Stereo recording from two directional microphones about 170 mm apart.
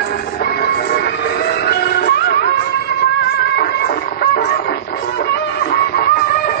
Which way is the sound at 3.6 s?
70° left (ahead or behind).